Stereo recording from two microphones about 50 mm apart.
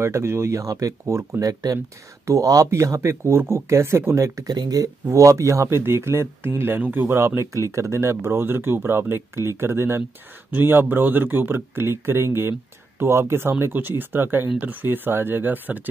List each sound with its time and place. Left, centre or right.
0.0 s speech: right
2.2 s speech: right
3.6 s speech: right
5.7 s speech: right
7.1 s speech: right
7.7 s speech: right
10.5 s speech: right